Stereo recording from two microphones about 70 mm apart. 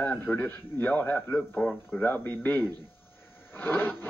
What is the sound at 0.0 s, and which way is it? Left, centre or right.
A man's voice, left.